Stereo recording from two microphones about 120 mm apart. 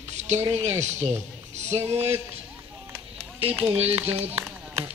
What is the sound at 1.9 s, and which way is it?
Speech, 60° right (ahead or behind).